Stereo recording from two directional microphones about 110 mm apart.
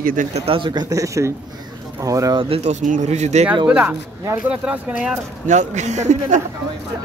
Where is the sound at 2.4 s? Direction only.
75° right (ahead or behind); by 3.4 s 90° right.